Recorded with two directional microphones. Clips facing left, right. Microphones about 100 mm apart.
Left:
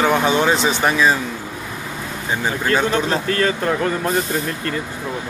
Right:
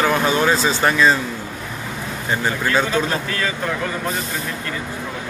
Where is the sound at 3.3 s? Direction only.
45° left (ahead or behind).